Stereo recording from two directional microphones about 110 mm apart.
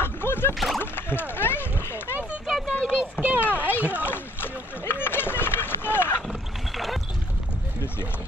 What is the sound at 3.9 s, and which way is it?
Rowboat, 20° left (ahead or behind).